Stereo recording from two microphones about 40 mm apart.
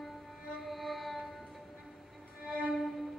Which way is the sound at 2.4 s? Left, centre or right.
Right.